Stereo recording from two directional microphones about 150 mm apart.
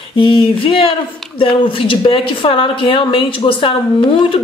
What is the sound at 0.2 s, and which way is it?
A woman's voice, 35° left (ahead or behind).